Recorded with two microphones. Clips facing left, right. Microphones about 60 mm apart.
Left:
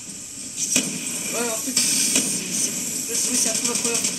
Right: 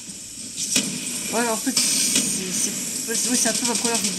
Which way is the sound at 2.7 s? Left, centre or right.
Centre.